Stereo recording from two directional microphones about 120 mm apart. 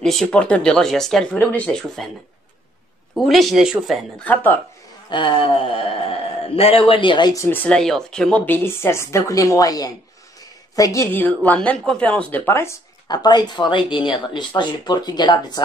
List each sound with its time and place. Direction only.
0.0 s speech: 5° left (ahead or behind)
1.4 s speech: 15° left (ahead or behind)
3.2 s speech: centre (ahead or behind)
4.2 s speech: 15° left (ahead or behind)
5.1 s a sound: 45° left (ahead or behind)
7.3 s speech: 20° left (ahead or behind)
11.1 s speech: 15° left (ahead or behind)
13.1 s speech: 35° left (ahead or behind)